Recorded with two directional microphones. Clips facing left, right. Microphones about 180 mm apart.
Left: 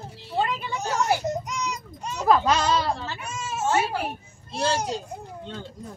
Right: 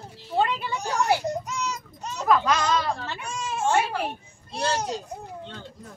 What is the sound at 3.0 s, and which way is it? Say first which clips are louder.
Baby cry: right 1 dB; 5° left (ahead or behind).